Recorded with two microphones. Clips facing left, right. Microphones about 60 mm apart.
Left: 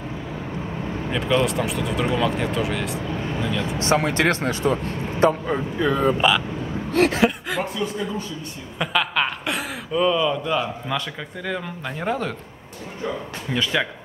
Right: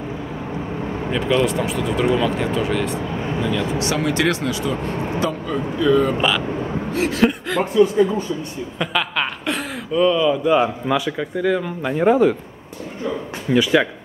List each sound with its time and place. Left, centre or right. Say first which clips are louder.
1.1 s speech: right 2 dB; centre
3.7 s speech: even; left
4.8 s speech: right 4 dB; right
5.2 s speech: left 8 dB; left
6.9 s a sound: left 5 dB; left
7.2 s speech: right 3 dB; centre
13.5 s speech: right 7 dB; centre